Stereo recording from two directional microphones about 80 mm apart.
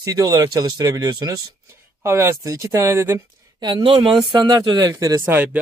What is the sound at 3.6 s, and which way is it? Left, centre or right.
Speech, right.